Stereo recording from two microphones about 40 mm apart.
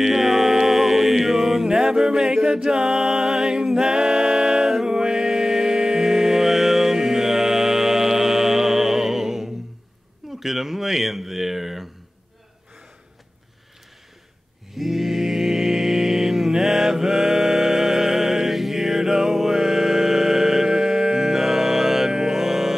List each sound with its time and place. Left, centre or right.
0.0 s music: centre
1.7 s music: centre
10.4 s speech: centre
14.8 s mantra: centre